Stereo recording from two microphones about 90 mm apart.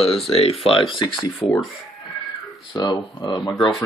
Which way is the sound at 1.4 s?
55° left (ahead or behind).